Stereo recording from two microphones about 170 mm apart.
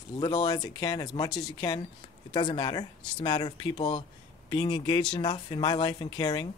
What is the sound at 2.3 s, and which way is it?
Speech, 25° left (ahead or behind).